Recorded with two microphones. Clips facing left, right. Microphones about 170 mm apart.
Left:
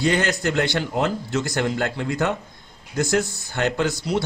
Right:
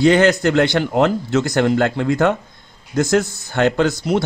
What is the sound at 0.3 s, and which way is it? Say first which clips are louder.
Speech: right 7 dB; 60° right (ahead or behind).